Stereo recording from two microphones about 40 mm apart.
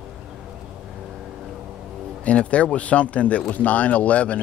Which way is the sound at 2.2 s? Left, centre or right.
Left.